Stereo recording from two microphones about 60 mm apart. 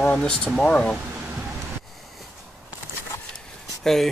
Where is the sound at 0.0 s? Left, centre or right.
Left.